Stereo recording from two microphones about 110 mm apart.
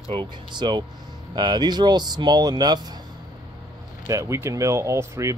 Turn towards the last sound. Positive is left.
turn(degrees=-25)  # may be behind; listen again after turning